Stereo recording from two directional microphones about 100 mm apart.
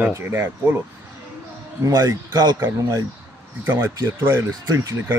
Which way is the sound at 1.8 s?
40° right (ahead or behind).